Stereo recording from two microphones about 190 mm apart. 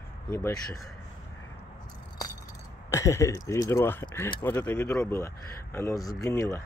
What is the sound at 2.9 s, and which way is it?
Speech, 15° left (ahead or behind).